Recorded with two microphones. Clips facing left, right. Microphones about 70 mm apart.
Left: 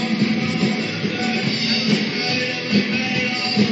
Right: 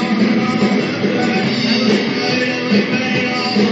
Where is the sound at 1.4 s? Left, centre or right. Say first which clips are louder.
Right 7 dB; right.